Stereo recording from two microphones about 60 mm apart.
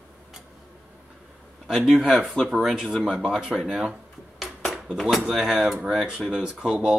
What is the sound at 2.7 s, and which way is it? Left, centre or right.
Speech, centre.